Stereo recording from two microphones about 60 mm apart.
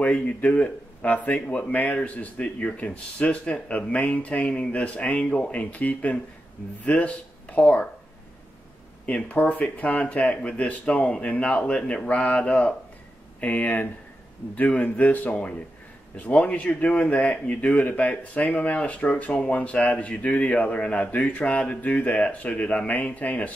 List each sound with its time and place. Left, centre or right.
0.0 s speech: left
9.0 s speech: left